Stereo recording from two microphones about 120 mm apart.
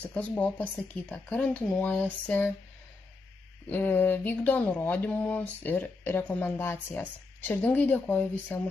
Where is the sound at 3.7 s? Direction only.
15° left (ahead or behind).